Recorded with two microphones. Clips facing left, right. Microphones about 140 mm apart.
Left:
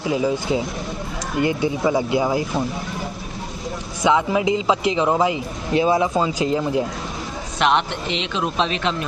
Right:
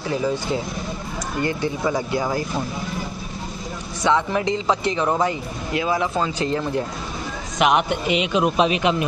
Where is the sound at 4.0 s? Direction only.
10° left (ahead or behind).